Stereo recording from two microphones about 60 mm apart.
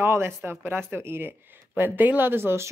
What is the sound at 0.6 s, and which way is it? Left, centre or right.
Speech, right.